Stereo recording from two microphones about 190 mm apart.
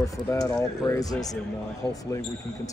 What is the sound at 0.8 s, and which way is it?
Speech, 20° left (ahead or behind).